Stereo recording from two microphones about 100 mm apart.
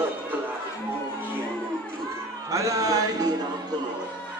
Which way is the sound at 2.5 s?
35° right (ahead or behind).